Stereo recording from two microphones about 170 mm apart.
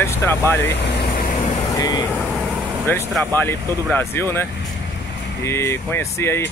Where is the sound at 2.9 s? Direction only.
15° left (ahead or behind).